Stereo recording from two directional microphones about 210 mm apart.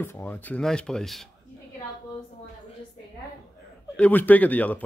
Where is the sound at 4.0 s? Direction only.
10° left (ahead or behind).